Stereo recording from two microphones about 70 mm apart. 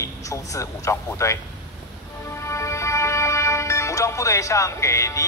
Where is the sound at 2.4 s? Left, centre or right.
Left.